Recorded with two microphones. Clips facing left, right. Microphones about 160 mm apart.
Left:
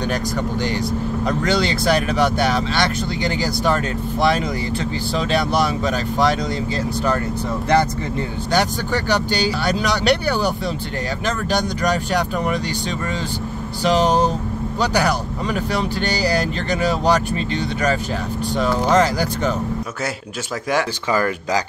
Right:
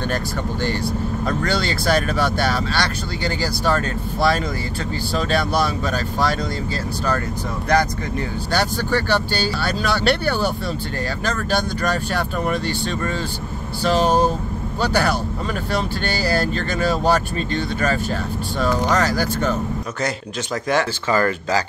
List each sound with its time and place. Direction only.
0.0 s speech: 15° left (ahead or behind)
8.5 s speech: 20° left (ahead or behind)
13.8 s speech: 20° left (ahead or behind)
20.7 s speech: 10° left (ahead or behind)